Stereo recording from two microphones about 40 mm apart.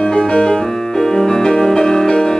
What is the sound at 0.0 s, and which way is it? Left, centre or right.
Music, centre.